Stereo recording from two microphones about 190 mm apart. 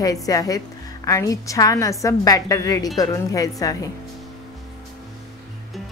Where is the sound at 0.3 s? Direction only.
20° left (ahead or behind).